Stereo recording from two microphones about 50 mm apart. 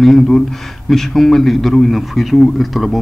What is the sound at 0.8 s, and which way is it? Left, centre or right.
A man's voice, centre.